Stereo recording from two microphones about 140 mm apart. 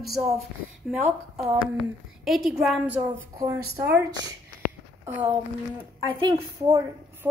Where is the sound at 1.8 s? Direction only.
Centre (ahead or behind).